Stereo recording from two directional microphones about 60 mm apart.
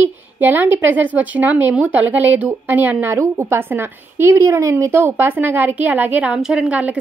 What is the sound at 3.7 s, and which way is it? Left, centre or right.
A woman's voice, right.